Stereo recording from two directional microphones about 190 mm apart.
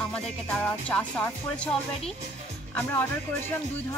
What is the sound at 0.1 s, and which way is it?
Speech, 5° left (ahead or behind).